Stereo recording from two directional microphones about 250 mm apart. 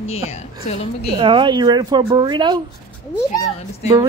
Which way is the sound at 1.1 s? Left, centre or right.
Centre.